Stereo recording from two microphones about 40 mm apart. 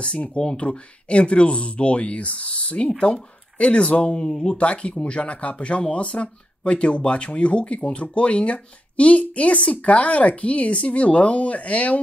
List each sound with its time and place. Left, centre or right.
0.4 s speech: left
4.2 s speech: centre
4.6 s speech: left